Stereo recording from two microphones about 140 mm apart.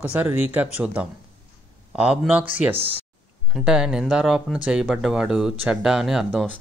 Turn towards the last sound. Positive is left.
turn(degrees=0)  # may be behind; listen again after turning